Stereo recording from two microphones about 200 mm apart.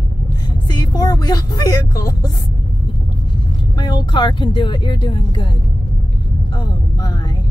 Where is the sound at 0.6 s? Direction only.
20° left (ahead or behind).